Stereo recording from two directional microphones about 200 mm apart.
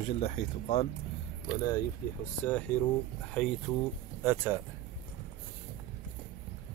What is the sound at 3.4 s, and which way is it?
Speech, centre (ahead or behind).